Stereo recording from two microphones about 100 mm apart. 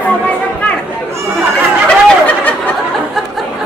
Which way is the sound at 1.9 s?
15° left (ahead or behind).